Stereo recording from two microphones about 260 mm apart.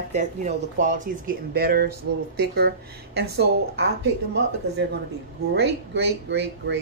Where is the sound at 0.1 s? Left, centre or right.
Right.